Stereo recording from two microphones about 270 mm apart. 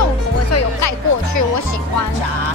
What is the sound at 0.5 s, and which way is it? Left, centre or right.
Music, left.